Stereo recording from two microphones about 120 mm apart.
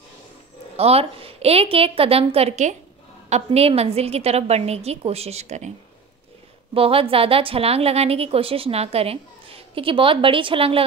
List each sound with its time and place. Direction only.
0.7 s a woman's voice: 55° right (ahead or behind)
6.7 s a woman's voice: 50° right (ahead or behind)